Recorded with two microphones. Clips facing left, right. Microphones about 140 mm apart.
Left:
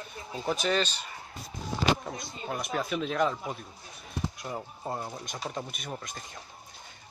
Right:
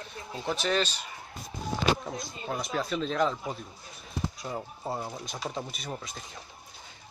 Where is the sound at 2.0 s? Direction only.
Centre (ahead or behind).